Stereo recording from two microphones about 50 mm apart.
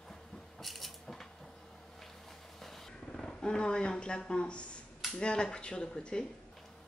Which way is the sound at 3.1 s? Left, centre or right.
Centre.